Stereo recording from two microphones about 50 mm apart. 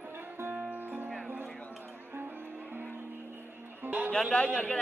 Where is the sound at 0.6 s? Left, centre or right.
Right.